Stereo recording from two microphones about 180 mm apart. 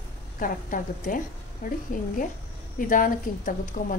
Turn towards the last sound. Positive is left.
turn(degrees=50)  # may be behind; listen again after turning